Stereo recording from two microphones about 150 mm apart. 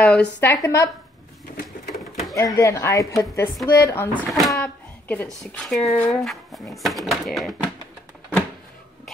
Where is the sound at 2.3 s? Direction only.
20° left (ahead or behind).